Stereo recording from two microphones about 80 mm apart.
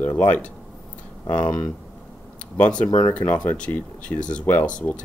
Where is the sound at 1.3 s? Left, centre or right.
Left.